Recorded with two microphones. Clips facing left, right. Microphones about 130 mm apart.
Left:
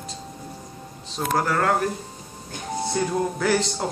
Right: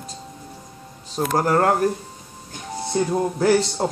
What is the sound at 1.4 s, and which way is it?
Speech, 40° right (ahead or behind).